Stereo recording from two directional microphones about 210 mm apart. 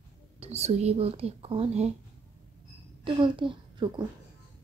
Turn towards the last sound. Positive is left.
turn(degrees=-20)  # may be behind; listen again after turning